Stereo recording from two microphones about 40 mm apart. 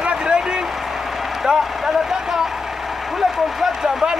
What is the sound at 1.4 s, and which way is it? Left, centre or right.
Vehicle, centre.